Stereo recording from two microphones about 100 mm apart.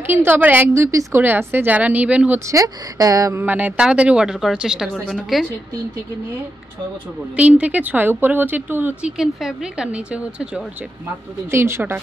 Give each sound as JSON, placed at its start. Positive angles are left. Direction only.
{"t": 0.0, "sound": "a woman's voice", "side_deg": -20}
{"t": 2.4, "sound": "speech", "side_deg": -35}
{"t": 3.4, "sound": "a woman's voice", "side_deg": -20}
{"t": 7.3, "sound": "speech", "side_deg": -15}
{"t": 9.0, "sound": "speech", "side_deg": -5}
{"t": 11.5, "sound": "a woman's voice", "side_deg": -25}